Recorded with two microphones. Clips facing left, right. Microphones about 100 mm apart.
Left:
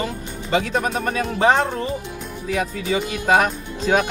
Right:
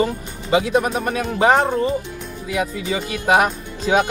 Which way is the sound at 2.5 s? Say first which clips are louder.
Even; 10° right (ahead or behind).